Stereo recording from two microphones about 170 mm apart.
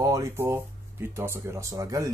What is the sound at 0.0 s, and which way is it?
Speech, 20° right (ahead or behind).